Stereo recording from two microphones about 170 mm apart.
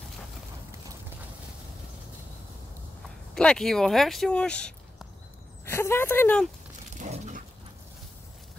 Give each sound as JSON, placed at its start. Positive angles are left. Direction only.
{"t": 3.3, "sound": "speech", "side_deg": 5}
{"t": 7.0, "sound": "dog", "side_deg": -45}